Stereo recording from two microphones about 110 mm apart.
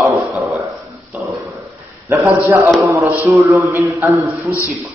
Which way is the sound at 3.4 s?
25° right (ahead or behind).